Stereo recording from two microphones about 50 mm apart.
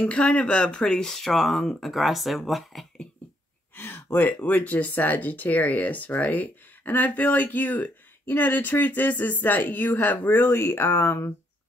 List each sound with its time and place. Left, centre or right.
0.0 s speech: left; by 2.9 s centre
3.7 s speech: left
4.4 s speech: left